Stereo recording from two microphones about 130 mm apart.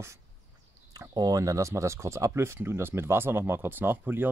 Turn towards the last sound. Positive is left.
turn(degrees=-15)  # may be behind; listen again after turning